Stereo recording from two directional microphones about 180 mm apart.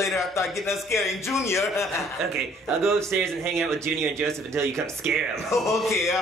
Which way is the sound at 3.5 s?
Centre (ahead or behind).